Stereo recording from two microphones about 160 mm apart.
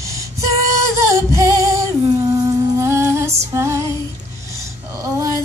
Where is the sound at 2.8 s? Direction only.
15° right (ahead or behind).